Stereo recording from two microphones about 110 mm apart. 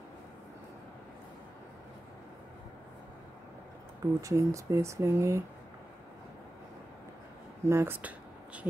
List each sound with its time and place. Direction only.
4.0 s speech: 30° right (ahead or behind)
7.6 s speech: 25° right (ahead or behind)